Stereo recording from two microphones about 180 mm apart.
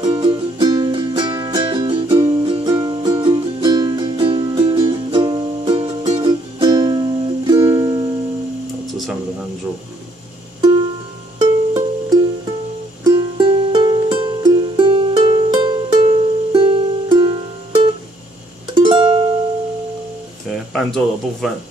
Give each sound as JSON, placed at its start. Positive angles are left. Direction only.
{"t": 0.0, "sound": "music", "side_deg": -25}
{"t": 8.8, "sound": "music", "side_deg": 0}
{"t": 11.3, "sound": "music", "side_deg": -20}
{"t": 20.7, "sound": "speech", "side_deg": 0}